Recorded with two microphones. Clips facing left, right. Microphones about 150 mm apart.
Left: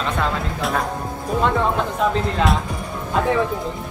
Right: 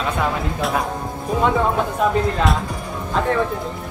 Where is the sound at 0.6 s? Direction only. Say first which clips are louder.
Right 1 dB; centre (ahead or behind).